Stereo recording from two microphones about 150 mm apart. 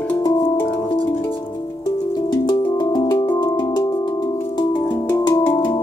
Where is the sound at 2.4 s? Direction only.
30° left (ahead or behind).